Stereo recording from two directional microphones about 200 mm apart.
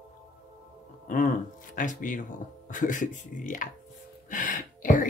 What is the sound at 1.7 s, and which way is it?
Speech, 40° left (ahead or behind).